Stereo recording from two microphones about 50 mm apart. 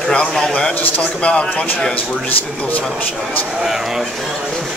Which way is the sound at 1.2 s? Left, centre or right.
Left.